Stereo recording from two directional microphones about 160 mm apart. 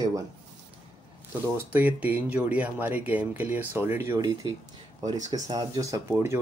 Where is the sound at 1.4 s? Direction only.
10° right (ahead or behind).